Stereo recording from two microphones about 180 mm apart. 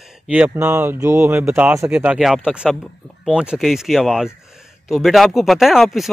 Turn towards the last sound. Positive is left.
turn(degrees=0)  # may be behind; listen again after turning